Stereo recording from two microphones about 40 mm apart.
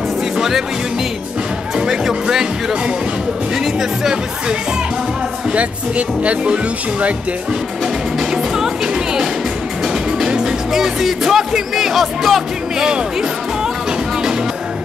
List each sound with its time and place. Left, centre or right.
0.4 s music: centre
1.8 s speech: centre
3.5 s speech: centre
5.5 s speech: right
7.8 s music: centre